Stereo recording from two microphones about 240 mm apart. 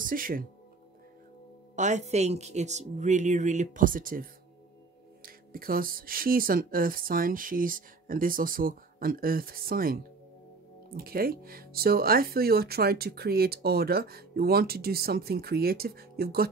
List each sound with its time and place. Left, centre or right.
0.0 s speech: right
1.8 s speech: right
11.0 s speech: right